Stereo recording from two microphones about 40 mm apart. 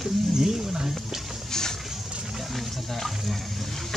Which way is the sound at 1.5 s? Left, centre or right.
Centre.